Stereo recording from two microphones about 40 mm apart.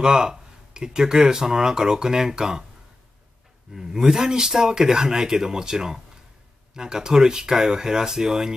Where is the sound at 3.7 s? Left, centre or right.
Centre.